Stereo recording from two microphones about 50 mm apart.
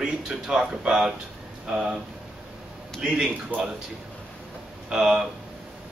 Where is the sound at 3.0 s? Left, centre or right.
Centre.